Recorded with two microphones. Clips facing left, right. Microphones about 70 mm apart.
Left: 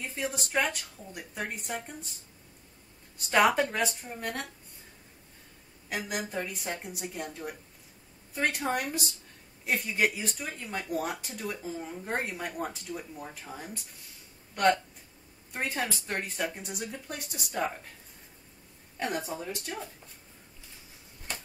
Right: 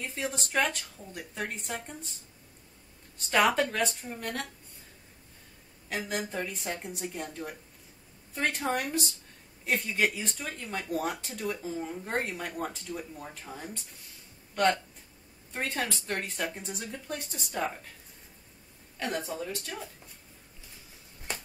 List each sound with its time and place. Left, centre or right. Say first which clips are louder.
0.0 s speech: even; centre
3.8 s speech: even; centre
4.2 s speech: even; centre
5.9 s speech: right 1 dB; centre
18.9 s speech: even; left